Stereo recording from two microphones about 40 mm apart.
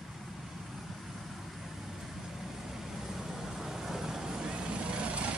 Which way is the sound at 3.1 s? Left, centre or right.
Centre.